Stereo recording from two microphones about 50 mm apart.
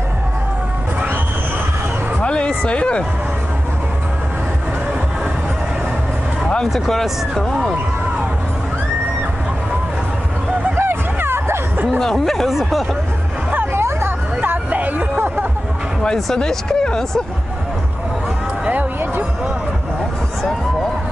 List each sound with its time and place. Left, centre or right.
2.2 s music: left
6.6 s speech: centre
10.8 s a sound: right
12.0 s speech: centre
12.4 s speech: centre
13.7 s hubbub: right
14.4 s hubbub: right
16.3 s speech: centre